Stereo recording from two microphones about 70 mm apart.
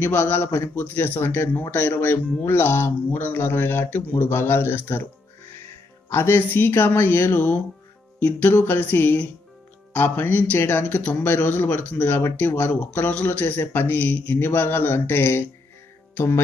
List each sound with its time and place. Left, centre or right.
0.0 s a man's voice: left